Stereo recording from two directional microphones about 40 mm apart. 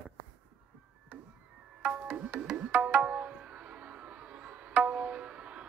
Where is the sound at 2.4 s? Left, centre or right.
Right.